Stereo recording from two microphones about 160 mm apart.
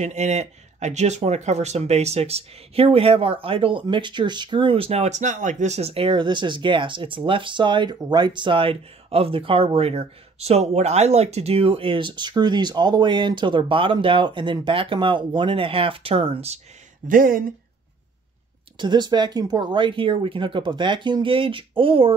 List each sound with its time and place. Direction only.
0.0 s speech: 45° right (ahead or behind)
17.1 s speech: 60° right (ahead or behind)
18.8 s speech: 30° right (ahead or behind)